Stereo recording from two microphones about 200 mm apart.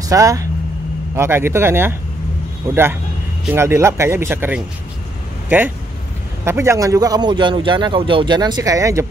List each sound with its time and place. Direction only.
0.1 s speech: 15° right (ahead or behind)
6.4 s a man's voice: 15° right (ahead or behind)